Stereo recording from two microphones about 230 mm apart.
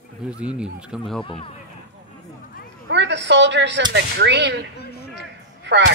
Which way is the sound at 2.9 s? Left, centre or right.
Right.